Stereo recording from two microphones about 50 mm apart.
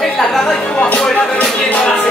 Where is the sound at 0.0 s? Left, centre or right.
Centre.